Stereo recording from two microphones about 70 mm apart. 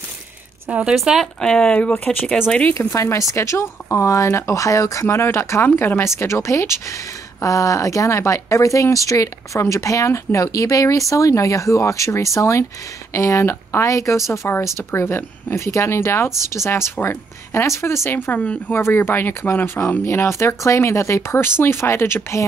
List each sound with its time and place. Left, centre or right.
0.7 s speech: centre
0.9 s speech: centre
1.4 s speech: centre
2.7 s speech: left
5.0 s speech: left